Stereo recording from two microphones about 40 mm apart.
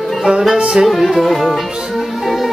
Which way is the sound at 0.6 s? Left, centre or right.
Right.